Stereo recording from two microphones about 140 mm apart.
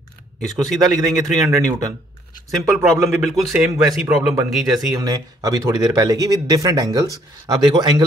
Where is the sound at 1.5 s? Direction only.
25° right (ahead or behind).